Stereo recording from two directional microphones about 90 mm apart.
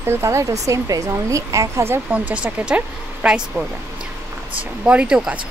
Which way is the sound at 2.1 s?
15° right (ahead or behind).